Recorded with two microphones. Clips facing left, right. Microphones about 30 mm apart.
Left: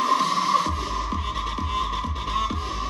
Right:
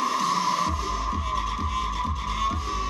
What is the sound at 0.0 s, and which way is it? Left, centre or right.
Music, left.